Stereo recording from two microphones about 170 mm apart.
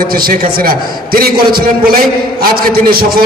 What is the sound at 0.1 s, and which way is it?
A man's voice, 60° right (ahead or behind).